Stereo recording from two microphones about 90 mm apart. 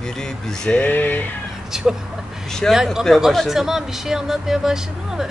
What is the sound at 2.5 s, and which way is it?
Speech, 5° left (ahead or behind).